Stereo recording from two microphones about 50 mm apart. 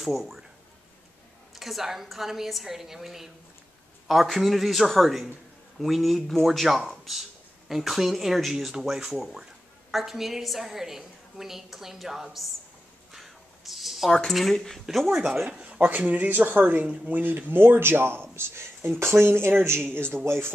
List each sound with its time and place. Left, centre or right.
0.0 s a woman's voice: centre
1.5 s a woman's voice: centre
13.1 s a sound: centre
14.1 s speech: centre
14.9 s a woman's voice: centre
15.6 s a sound: right
15.9 s a man's voice: right